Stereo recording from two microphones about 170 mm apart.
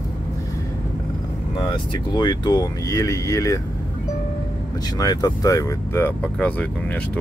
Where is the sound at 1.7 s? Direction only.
25° left (ahead or behind).